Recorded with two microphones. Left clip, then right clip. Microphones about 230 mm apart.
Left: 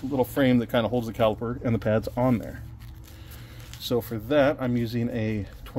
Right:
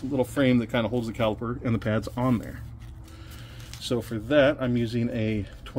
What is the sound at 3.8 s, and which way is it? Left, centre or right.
Speech, left.